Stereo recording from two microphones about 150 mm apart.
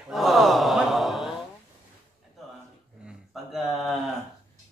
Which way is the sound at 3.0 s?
5° right (ahead or behind).